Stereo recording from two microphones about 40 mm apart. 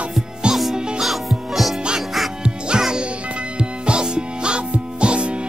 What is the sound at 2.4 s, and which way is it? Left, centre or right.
Music, centre.